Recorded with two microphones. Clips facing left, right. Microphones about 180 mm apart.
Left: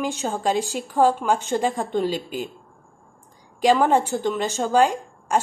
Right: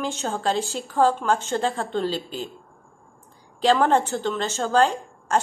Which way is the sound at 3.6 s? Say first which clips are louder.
Left 1 dB; 15° left (ahead or behind).